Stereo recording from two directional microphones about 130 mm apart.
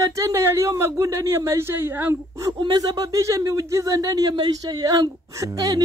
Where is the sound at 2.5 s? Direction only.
35° right (ahead or behind).